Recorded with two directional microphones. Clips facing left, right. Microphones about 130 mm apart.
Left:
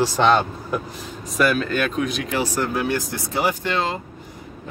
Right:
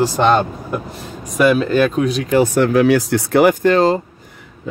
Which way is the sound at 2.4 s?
65° right (ahead or behind).